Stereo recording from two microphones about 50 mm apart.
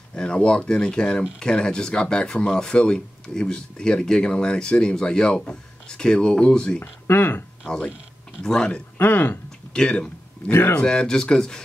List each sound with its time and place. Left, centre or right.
0.1 s speech: centre
7.1 s speech: left
8.4 s speech: centre
8.9 s speech: left
9.8 s speech: centre